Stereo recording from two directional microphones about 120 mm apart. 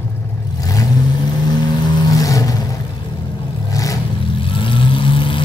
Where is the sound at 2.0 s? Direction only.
30° left (ahead or behind).